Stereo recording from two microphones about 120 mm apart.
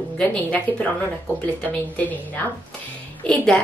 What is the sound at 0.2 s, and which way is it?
A woman's voice, 10° left (ahead or behind).